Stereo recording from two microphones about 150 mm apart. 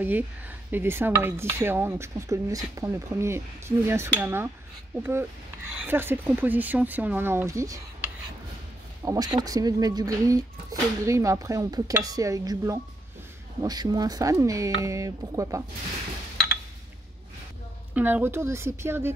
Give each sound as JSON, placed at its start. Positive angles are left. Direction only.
{"t": 0.7, "sound": "speech", "side_deg": -15}
{"t": 9.0, "sound": "speech", "side_deg": -25}
{"t": 17.9, "sound": "speech", "side_deg": -10}